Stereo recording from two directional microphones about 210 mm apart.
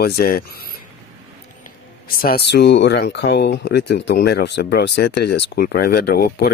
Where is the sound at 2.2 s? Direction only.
50° left (ahead or behind).